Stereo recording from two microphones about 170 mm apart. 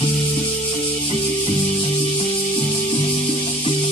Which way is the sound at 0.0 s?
35° left (ahead or behind).